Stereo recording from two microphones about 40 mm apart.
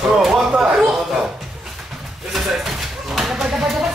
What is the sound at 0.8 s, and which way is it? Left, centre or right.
Speech, centre.